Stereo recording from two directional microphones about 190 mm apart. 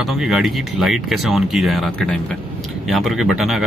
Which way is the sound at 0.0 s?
Centre (ahead or behind).